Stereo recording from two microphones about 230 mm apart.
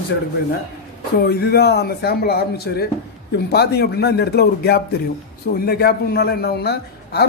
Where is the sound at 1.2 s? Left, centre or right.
Left.